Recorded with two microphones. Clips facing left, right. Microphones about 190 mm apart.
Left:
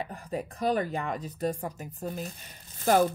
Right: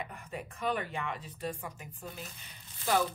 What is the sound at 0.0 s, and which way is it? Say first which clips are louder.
Speech: left 7 dB; 35° left (ahead or behind).